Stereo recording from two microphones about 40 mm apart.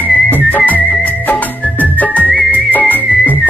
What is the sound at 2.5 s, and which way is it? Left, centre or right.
Music, left.